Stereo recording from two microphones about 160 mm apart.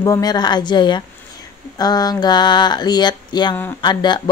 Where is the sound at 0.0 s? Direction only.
25° left (ahead or behind).